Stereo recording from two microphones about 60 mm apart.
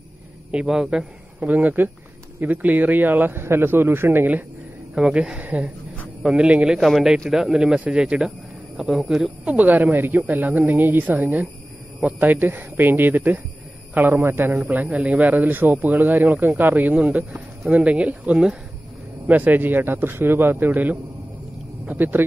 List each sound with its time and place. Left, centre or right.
0.7 s speech: centre
1.4 s a woman's voice: right
4.9 s speech: centre
6.8 s speech: centre
9.5 s a woman's voice: right
14.7 s speech: right
19.2 s a woman's voice: right